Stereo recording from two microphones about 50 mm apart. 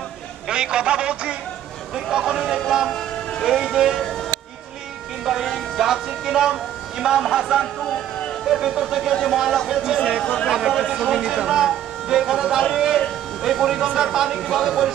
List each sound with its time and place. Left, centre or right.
0.5 s speech: centre
4.0 s music: centre
5.2 s speech: centre
7.8 s speech: centre
8.5 s speech: centre
10.2 s speech: centre
10.5 s speech: centre
12.7 s a sound: centre
13.4 s speech: centre